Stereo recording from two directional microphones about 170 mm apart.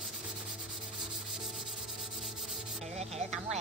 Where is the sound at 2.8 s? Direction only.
40° right (ahead or behind).